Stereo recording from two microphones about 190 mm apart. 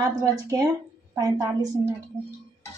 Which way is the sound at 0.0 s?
15° right (ahead or behind).